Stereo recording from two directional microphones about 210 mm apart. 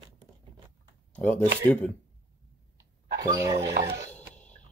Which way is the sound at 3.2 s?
15° right (ahead or behind).